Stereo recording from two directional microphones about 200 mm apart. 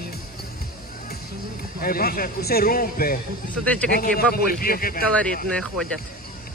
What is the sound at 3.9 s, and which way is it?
A man's voice, 45° left (ahead or behind).